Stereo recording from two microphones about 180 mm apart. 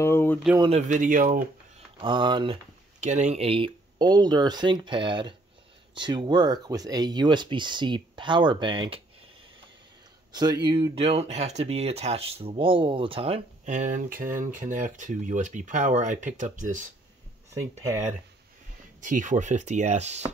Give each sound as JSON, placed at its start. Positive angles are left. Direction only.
{"t": 0.0, "sound": "a sound", "side_deg": 15}
{"t": 0.6, "sound": "speech", "side_deg": -35}
{"t": 2.0, "sound": "speech", "side_deg": -25}
{"t": 3.0, "sound": "speech", "side_deg": -40}
{"t": 10.3, "sound": "speech", "side_deg": -25}
{"t": 17.6, "sound": "speech", "side_deg": -15}
{"t": 18.9, "sound": "speech", "side_deg": -45}